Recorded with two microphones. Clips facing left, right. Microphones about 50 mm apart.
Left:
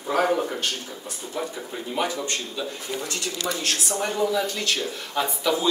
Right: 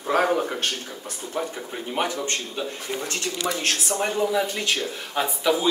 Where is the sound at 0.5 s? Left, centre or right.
Right.